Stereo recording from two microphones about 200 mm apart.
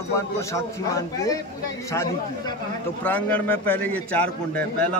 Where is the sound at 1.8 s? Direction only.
15° left (ahead or behind).